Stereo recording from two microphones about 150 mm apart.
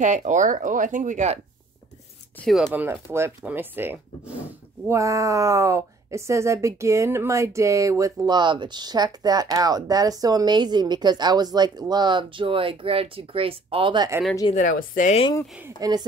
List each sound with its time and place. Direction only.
0.0 s speech: 55° right (ahead or behind)
2.4 s speech: 5° left (ahead or behind)
2.7 s speech: 15° right (ahead or behind); by 14.1 s 30° right (ahead or behind)
14.5 s a woman's voice: 60° left (ahead or behind)
15.8 s speech: 25° right (ahead or behind)